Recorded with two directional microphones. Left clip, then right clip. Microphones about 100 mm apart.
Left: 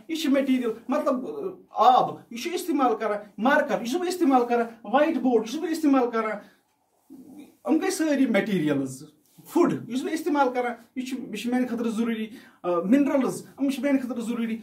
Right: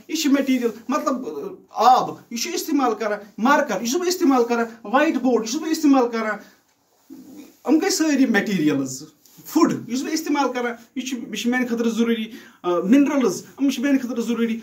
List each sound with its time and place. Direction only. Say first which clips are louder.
0.1 s speech: right 3 dB; 35° left (ahead or behind)
7.6 s speech: right 5 dB; 35° left (ahead or behind)